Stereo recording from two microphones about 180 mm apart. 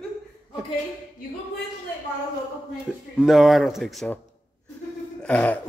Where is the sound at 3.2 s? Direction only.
Centre (ahead or behind).